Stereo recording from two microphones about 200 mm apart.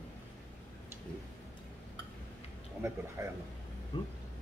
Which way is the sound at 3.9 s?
20° left (ahead or behind).